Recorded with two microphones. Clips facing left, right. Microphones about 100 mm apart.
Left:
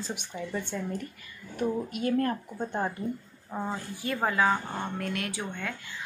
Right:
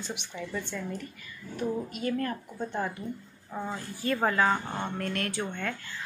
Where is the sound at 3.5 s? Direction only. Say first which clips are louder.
Left 2 dB; 20° left (ahead or behind).